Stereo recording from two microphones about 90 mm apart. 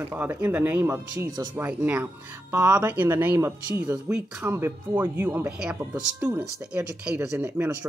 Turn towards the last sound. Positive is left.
turn(degrees=-30)  # may be behind; listen again after turning